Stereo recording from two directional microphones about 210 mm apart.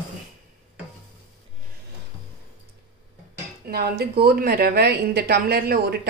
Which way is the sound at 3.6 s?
50° right (ahead or behind).